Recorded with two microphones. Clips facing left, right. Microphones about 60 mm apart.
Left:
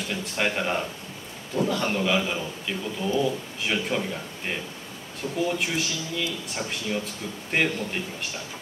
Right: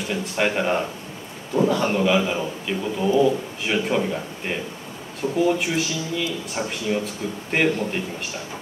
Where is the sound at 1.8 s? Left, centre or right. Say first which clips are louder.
Right 5 dB; centre.